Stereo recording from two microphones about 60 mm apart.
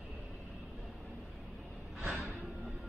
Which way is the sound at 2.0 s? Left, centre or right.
Right.